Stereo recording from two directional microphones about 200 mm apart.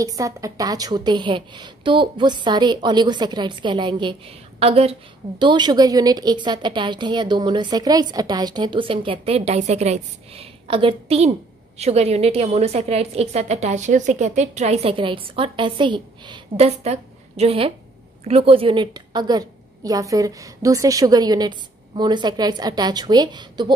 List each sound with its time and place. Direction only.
0.0 s a woman's voice: 15° right (ahead or behind)